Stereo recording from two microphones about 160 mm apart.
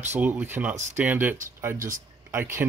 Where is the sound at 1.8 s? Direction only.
55° right (ahead or behind).